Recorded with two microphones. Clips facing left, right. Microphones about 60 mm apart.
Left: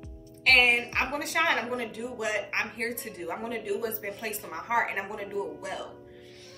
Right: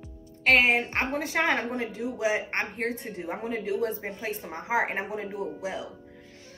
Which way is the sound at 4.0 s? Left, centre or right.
Centre.